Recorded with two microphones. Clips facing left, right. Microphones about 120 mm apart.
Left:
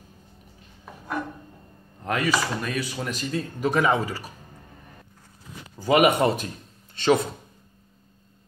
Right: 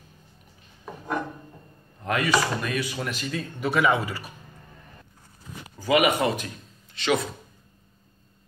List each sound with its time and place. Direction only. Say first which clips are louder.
2.0 s speech: right 1 dB; 40° left (ahead or behind)
5.9 s speech: left 3 dB; 40° left (ahead or behind)